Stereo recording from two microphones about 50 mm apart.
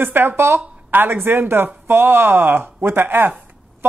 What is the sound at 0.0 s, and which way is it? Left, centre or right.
Speech, right.